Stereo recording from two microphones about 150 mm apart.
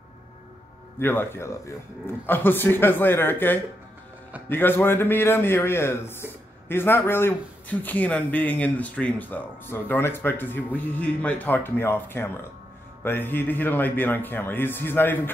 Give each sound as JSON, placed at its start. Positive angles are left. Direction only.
{"t": 0.9, "sound": "a man's voice", "side_deg": 15}